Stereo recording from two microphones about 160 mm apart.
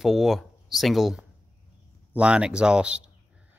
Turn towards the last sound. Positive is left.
turn(degrees=-5)  # may be behind; listen again after turning